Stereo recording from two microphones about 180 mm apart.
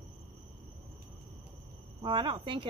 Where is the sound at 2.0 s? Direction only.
25° right (ahead or behind).